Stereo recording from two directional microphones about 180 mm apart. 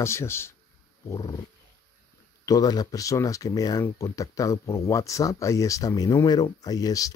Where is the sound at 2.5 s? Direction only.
20° left (ahead or behind).